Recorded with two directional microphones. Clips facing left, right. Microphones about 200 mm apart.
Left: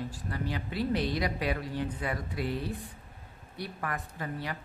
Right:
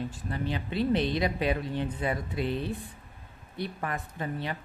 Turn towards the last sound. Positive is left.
turn(degrees=-25)  # may be behind; listen again after turning